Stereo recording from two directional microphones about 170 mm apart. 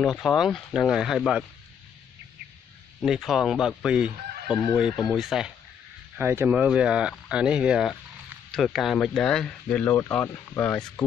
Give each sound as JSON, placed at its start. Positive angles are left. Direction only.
{"t": 0.0, "sound": "speech", "side_deg": 0}
{"t": 3.0, "sound": "speech", "side_deg": 0}
{"t": 4.5, "sound": "speech", "side_deg": 20}
{"t": 5.1, "sound": "speech", "side_deg": 0}
{"t": 6.1, "sound": "speech", "side_deg": -15}